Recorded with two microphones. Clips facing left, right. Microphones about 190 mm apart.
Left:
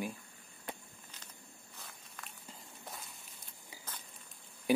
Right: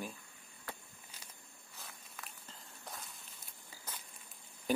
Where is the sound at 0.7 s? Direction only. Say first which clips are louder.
Left 3 dB; 20° left (ahead or behind).